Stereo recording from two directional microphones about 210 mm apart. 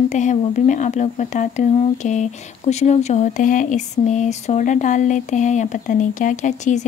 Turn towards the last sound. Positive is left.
turn(degrees=35)  # may be behind; listen again after turning